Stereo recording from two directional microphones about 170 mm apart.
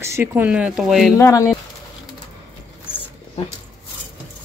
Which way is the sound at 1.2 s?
15° left (ahead or behind).